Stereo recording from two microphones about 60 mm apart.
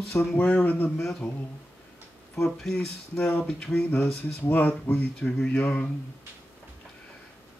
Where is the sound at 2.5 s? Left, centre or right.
Centre.